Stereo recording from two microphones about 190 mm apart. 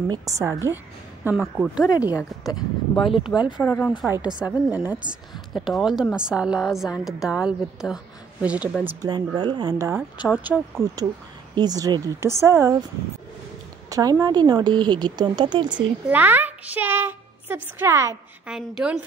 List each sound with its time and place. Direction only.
0.1 s speech: 15° right (ahead or behind)
1.2 s a woman's voice: 5° right (ahead or behind)
2.1 s speech: 20° left (ahead or behind)
3.1 s a woman's voice: 5° right (ahead or behind)
3.6 s speech: 5° left (ahead or behind)
4.4 s a woman's voice: 10° right (ahead or behind)
9.0 s speech: 20° right (ahead or behind)
11.5 s speech: 20° right (ahead or behind)
13.8 s speech: 20° right (ahead or behind)
16.1 s a child's voice: 10° right (ahead or behind)
18.5 s a woman's voice: 5° right (ahead or behind)